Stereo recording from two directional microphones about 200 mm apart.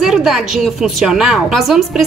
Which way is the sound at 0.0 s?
Centre (ahead or behind).